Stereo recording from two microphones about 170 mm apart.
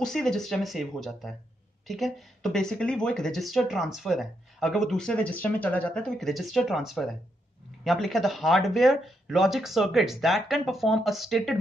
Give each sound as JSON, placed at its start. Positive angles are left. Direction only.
{"t": 0.0, "sound": "speech", "side_deg": 5}